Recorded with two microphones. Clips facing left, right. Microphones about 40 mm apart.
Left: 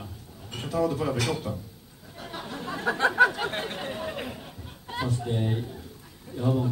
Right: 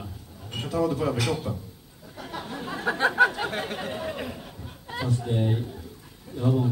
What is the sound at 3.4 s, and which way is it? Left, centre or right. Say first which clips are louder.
Chatter: right 1 dB; left.